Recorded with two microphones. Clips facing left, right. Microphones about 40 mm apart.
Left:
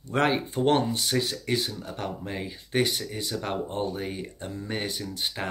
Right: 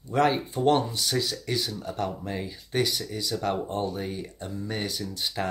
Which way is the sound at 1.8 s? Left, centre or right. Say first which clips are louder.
Right 3 dB; left.